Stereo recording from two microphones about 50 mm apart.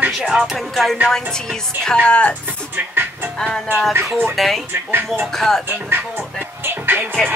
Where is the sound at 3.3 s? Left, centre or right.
Centre.